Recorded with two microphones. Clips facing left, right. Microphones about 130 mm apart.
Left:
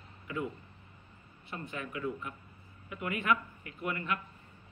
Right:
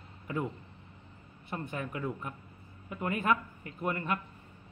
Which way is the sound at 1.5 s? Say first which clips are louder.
Right 3 dB; 45° right (ahead or behind).